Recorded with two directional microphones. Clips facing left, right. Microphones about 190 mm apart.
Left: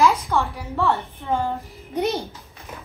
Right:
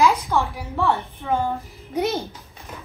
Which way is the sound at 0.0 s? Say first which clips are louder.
Even; 15° right (ahead or behind).